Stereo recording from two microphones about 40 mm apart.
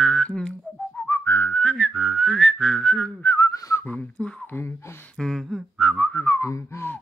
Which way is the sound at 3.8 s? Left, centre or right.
Left.